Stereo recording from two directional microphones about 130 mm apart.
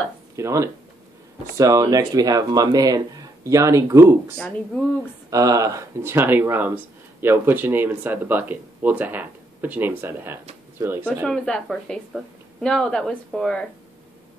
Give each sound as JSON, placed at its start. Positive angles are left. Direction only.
{"t": 0.4, "sound": "speech", "side_deg": -20}
{"t": 4.4, "sound": "speech", "side_deg": 10}
{"t": 5.3, "sound": "speech", "side_deg": -25}
{"t": 11.2, "sound": "a woman's voice", "side_deg": 5}